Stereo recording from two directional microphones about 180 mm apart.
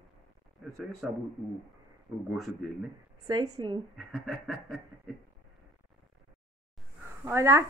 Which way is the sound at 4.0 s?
Centre (ahead or behind).